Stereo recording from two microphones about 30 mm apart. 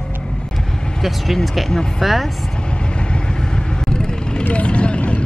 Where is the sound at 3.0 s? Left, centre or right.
Left.